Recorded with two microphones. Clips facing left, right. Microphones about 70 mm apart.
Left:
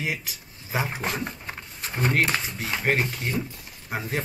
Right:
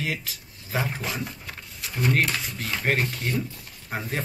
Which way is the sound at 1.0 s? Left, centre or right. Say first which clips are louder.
Left 2 dB; left.